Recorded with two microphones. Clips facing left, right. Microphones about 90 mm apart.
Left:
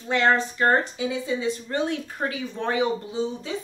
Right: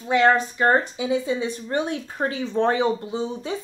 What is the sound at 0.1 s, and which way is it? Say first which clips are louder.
A woman's voice: right 3 dB; 15° right (ahead or behind).